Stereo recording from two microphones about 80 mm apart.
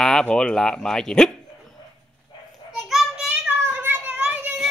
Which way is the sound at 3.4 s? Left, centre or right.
Right.